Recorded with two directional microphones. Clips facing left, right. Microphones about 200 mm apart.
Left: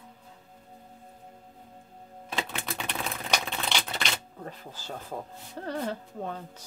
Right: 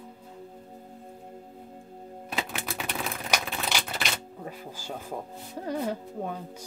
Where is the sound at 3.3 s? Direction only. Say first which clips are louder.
Even; 5° right (ahead or behind).